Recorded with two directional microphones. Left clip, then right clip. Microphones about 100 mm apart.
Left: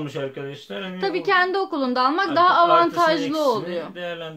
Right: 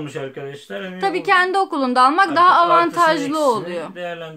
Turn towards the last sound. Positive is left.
turn(degrees=-45)  # may be behind; listen again after turning